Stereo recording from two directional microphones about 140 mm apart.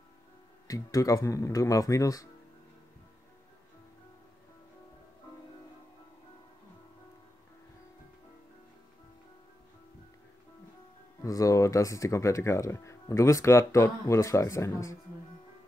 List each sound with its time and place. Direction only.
0.7 s speech: 25° left (ahead or behind)
11.2 s speech: 25° left (ahead or behind)